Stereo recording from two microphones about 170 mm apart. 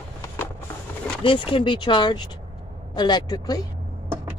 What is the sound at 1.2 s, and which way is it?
Speech, 30° left (ahead or behind).